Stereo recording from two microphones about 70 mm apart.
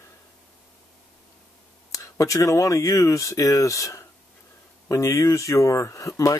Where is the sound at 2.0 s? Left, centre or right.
Left.